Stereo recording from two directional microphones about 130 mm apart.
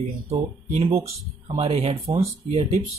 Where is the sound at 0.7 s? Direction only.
50° right (ahead or behind).